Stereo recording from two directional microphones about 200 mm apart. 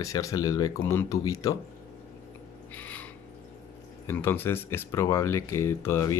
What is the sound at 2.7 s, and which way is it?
Owl, 10° left (ahead or behind).